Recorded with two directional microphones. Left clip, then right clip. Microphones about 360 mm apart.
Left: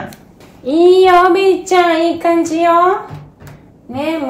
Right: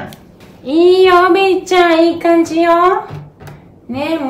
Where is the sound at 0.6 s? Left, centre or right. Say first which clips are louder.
Even; centre.